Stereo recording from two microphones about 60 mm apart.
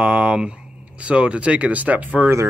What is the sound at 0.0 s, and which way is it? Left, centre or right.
Speech, centre.